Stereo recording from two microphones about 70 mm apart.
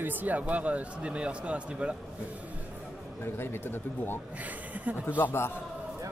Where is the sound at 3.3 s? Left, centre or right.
Left.